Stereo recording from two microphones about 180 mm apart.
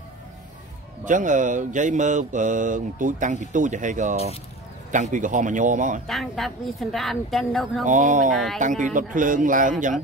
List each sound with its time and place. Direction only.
1.0 s mantra: 45° right (ahead or behind)
6.0 s a woman's voice: centre (ahead or behind)
7.8 s mantra: 45° right (ahead or behind)